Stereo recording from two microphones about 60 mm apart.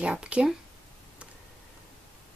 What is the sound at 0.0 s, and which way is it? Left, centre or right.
Speech, centre.